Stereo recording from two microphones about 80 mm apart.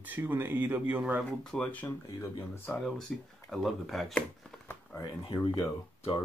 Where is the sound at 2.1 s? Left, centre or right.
Left.